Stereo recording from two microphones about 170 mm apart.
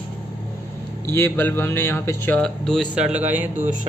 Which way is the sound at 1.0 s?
15° left (ahead or behind).